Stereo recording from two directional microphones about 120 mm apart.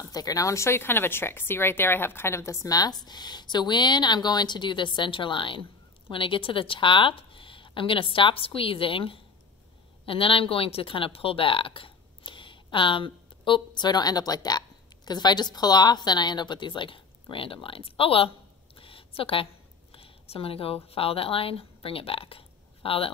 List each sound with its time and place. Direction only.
0.1 s a woman's voice: 30° left (ahead or behind); by 18.3 s 50° left (ahead or behind)
18.8 s a sound: 50° left (ahead or behind)
19.9 s speech: 50° left (ahead or behind)